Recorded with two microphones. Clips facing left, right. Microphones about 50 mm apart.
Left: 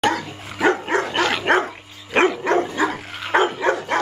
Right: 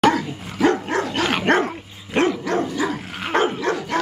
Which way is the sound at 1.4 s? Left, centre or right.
Centre.